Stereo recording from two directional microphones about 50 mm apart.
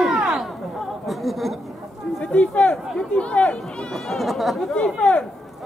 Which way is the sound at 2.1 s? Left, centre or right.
Left.